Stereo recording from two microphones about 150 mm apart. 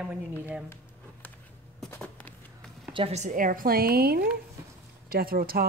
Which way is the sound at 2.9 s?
45° right (ahead or behind).